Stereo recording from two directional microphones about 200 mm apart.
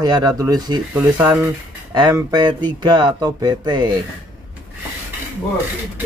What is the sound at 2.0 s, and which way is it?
Speech, 20° right (ahead or behind).